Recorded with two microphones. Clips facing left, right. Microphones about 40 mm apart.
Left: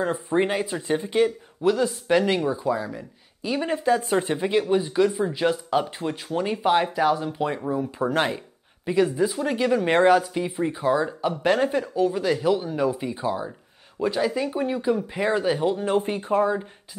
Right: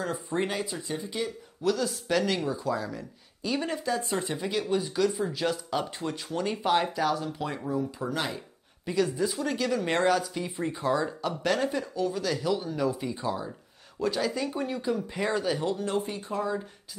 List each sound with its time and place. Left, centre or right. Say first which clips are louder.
0.0 s speech: left 7 dB; left
0.8 s speech: left 11 dB; left
1.6 s speech: left 6 dB; left
8.0 s speech: left 8 dB; left
8.8 s speech: left 6 dB; left
10.5 s speech: left 5 dB; centre
16.0 s speech: left 9 dB; left